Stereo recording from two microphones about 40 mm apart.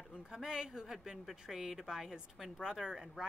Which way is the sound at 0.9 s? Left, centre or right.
Centre.